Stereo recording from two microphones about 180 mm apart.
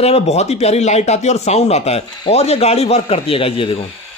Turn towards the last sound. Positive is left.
turn(degrees=30)  # may be behind; listen again after turning